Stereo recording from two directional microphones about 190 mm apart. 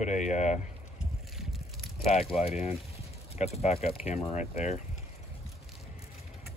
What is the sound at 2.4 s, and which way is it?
Speech, 35° left (ahead or behind).